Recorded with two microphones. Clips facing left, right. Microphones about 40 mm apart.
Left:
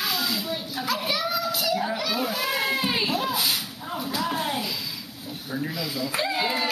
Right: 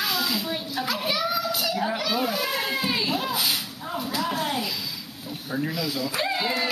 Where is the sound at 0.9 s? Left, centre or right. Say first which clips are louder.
Even; centre.